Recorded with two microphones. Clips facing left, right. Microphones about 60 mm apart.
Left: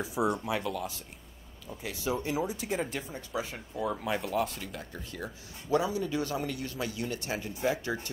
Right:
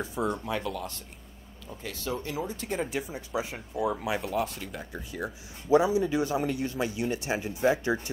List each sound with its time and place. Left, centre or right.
0.0 s speech: centre
1.8 s speech: centre
2.9 s speech: centre